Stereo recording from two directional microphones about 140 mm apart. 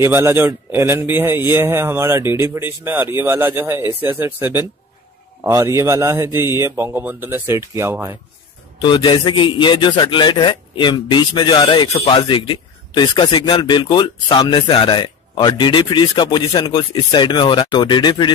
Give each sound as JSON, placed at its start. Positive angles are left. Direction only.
{"t": 0.0, "sound": "a man's voice", "side_deg": -15}
{"t": 8.8, "sound": "a man's voice", "side_deg": 35}